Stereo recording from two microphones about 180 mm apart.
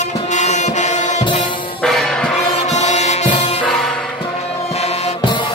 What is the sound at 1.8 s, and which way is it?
Music, 5° left (ahead or behind).